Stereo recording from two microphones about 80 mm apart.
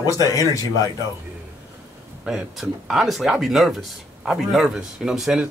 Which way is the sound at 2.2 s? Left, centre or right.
Centre.